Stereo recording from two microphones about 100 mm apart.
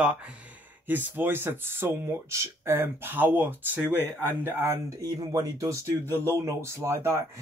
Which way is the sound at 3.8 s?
20° left (ahead or behind).